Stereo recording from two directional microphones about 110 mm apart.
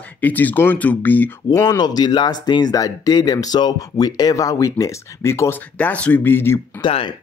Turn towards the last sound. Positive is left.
turn(degrees=50)  # may be behind; listen again after turning